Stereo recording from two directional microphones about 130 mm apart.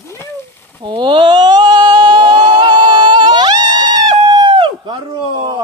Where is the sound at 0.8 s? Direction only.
40° right (ahead or behind).